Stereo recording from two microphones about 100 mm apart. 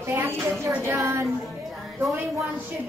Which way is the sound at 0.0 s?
25° right (ahead or behind).